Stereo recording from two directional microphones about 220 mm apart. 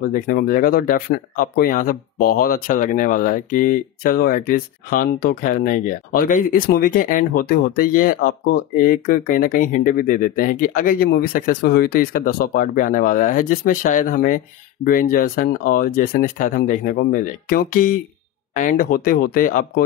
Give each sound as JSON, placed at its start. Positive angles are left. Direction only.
{"t": 0.0, "sound": "speech", "side_deg": 40}